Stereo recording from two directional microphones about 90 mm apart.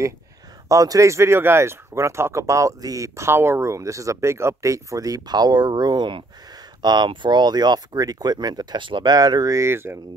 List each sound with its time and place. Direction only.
0.7 s speech: 35° right (ahead or behind)